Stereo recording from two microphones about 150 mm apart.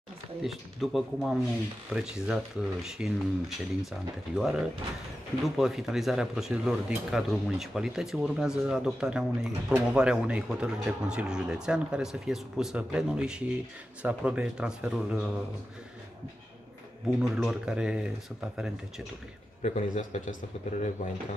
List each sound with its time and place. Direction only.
0.4 s a man's voice: centre (ahead or behind)
17.2 s speech: 5° right (ahead or behind)
19.6 s a man's voice: 50° left (ahead or behind)